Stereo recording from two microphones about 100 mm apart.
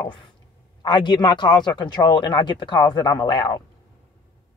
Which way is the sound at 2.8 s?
40° left (ahead or behind).